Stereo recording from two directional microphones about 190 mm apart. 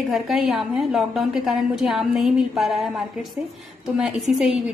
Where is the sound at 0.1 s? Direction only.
Centre (ahead or behind).